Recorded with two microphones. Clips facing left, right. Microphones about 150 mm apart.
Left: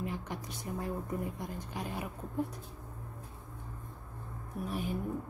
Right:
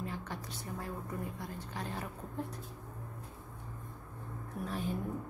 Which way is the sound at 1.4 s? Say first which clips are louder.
Left 2 dB; 15° left (ahead or behind).